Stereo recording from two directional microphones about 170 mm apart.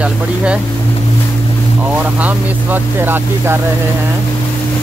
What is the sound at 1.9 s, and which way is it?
Speech, 10° right (ahead or behind).